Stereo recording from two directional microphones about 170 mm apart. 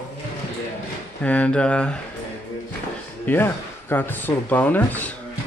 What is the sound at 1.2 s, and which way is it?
Speech, 5° left (ahead or behind).